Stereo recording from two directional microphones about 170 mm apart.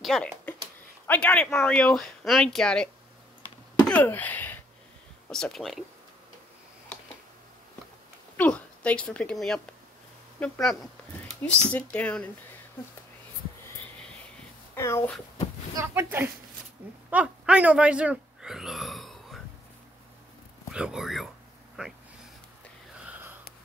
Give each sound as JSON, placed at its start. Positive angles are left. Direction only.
{"t": 0.0, "sound": "speech", "side_deg": 5}
{"t": 3.9, "sound": "speech", "side_deg": 10}
{"t": 8.4, "sound": "speech", "side_deg": 5}
{"t": 14.8, "sound": "speech", "side_deg": 15}
{"t": 15.8, "sound": "speech", "side_deg": -15}
{"t": 20.7, "sound": "speech", "side_deg": -5}
{"t": 22.9, "sound": "wheeze", "side_deg": -10}